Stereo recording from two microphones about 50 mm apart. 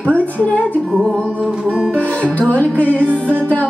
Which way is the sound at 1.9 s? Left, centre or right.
Left.